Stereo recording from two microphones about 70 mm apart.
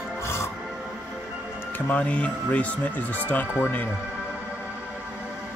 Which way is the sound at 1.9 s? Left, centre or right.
Left.